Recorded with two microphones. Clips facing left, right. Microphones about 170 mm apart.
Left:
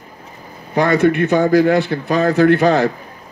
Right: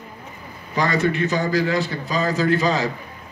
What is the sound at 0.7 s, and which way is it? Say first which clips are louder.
A man's voice: left 7 dB; 55° left (ahead or behind).